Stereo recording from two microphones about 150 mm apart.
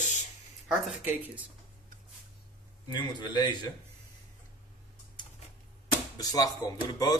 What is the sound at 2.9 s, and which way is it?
Speech, 30° left (ahead or behind).